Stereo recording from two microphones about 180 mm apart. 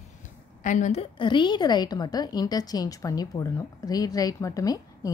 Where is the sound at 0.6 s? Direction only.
45° left (ahead or behind).